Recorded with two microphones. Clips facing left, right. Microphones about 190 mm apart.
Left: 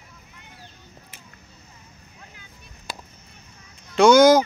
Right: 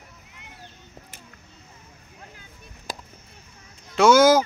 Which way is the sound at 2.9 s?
45° right (ahead or behind).